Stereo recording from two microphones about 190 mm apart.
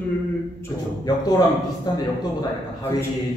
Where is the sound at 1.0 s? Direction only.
20° left (ahead or behind).